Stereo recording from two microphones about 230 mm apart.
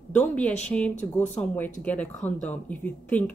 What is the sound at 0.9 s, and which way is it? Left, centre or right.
Speech, left.